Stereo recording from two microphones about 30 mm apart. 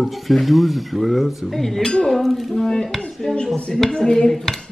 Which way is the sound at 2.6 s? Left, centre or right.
Left.